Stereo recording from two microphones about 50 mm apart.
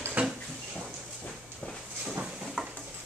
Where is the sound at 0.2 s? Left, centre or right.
Right.